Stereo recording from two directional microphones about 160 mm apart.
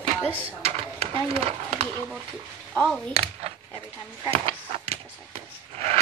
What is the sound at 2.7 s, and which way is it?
Speech, 5° left (ahead or behind).